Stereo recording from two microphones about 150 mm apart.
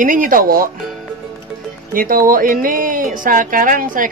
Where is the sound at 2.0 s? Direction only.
70° right (ahead or behind).